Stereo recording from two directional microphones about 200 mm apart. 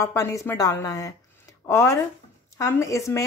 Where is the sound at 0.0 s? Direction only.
15° left (ahead or behind).